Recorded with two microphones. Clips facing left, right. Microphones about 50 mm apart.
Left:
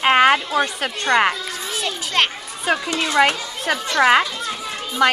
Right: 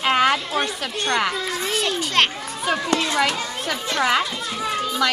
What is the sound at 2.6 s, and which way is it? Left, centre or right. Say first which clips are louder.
A child's voice: left 1 dB; left.